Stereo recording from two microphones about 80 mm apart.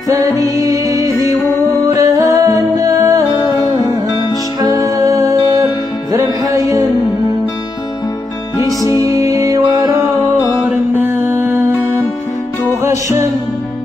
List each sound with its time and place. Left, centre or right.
0.1 s music: right
4.7 s music: right
8.9 s music: right
10.6 s music: right
12.8 s music: right